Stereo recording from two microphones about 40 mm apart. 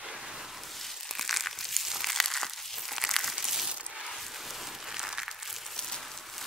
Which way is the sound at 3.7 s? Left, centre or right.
Centre.